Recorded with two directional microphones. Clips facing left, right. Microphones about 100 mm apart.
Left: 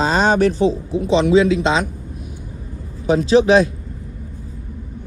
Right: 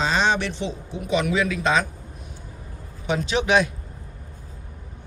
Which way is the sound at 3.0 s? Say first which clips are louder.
Left 10 dB; 35° left (ahead or behind).